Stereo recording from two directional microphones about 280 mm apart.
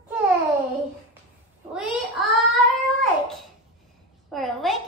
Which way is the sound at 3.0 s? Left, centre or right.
Centre.